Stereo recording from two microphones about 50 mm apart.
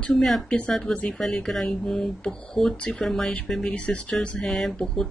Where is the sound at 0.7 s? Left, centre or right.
Centre.